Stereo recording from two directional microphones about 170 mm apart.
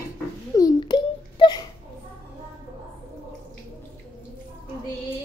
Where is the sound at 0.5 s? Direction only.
25° left (ahead or behind).